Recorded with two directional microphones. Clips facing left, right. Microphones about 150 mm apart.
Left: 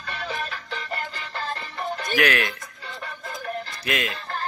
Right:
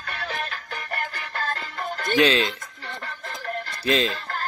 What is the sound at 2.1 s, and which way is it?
Speech, 25° right (ahead or behind).